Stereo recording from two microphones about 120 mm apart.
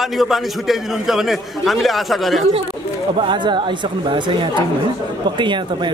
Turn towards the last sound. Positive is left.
turn(degrees=-40)  # may be behind; listen again after turning